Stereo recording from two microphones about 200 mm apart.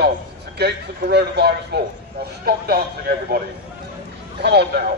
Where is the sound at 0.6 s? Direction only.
55° right (ahead or behind).